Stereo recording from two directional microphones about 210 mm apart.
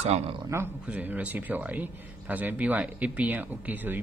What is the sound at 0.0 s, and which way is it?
Speech, 30° right (ahead or behind).